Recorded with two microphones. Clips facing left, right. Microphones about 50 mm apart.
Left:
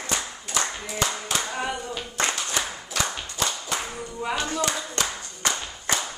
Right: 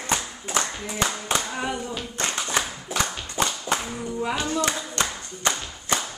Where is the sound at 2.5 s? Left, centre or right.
Right.